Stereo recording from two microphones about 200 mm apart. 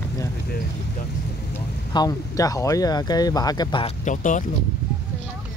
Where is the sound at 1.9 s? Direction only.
20° left (ahead or behind).